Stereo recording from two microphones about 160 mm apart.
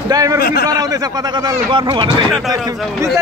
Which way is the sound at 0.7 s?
25° right (ahead or behind).